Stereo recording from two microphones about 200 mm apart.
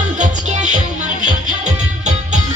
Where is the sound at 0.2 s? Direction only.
35° right (ahead or behind).